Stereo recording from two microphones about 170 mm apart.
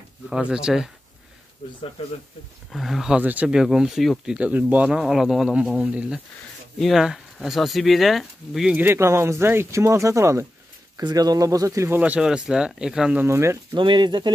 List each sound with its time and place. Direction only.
0.3 s speech: 5° right (ahead or behind)
2.0 s speech: 35° left (ahead or behind)
2.7 s speech: centre (ahead or behind)
13.7 s speech: 25° right (ahead or behind)